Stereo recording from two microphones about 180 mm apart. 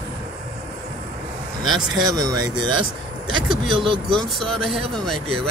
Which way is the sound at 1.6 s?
Centre (ahead or behind).